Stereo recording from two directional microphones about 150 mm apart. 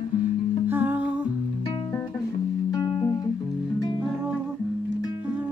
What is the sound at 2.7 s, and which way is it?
Music, 25° left (ahead or behind).